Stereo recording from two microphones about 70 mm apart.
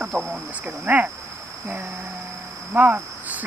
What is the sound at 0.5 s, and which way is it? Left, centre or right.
Speech, right.